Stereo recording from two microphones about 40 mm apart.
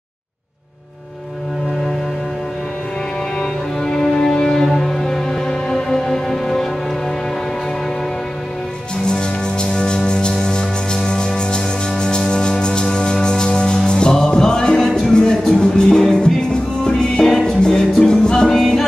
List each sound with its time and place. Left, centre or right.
3.3 s music: centre
9.0 s music: left
18.5 s music: centre